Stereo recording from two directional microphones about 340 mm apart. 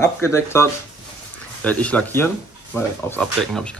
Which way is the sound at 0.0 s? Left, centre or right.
Centre.